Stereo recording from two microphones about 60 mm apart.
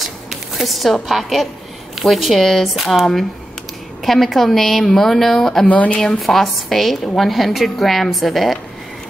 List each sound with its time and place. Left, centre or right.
0.0 s a sound: centre
1.0 s a woman's voice: centre
5.7 s speech: left
5.9 s a woman's voice: centre